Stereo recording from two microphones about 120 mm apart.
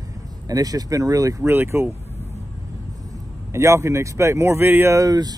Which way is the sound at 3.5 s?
25° right (ahead or behind).